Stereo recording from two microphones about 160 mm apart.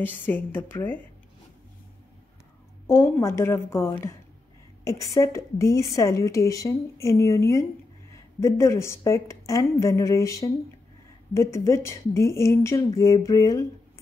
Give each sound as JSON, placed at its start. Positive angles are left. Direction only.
{"t": 0.0, "sound": "speech", "side_deg": 10}
{"t": 2.9, "sound": "a woman's voice", "side_deg": 15}